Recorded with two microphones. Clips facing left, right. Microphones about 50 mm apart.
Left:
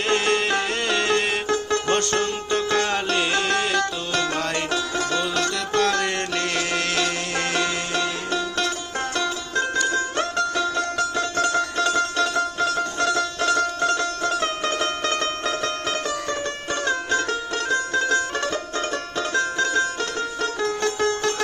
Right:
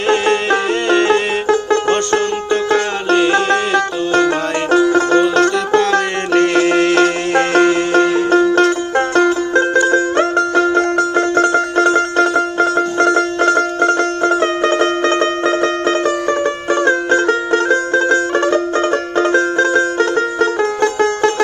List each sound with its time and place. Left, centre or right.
0.1 s music: centre
1.5 s music: right
3.3 s music: right
4.6 s music: right
5.8 s music: right
7.0 s music: right
9.6 s music: right